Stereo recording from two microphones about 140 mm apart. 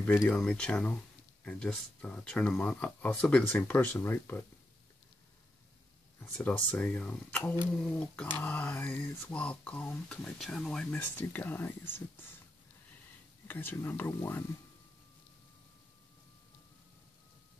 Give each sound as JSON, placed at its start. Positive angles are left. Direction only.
{"t": 0.2, "sound": "speech", "side_deg": 5}
{"t": 6.3, "sound": "speech", "side_deg": 10}
{"t": 13.5, "sound": "speech", "side_deg": 15}